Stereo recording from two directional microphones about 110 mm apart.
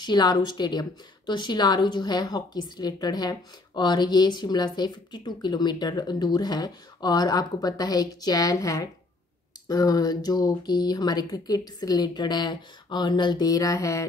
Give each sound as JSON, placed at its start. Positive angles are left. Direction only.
{"t": 0.0, "sound": "speech", "side_deg": 40}